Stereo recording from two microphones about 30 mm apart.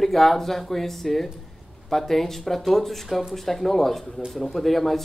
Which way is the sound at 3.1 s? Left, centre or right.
Centre.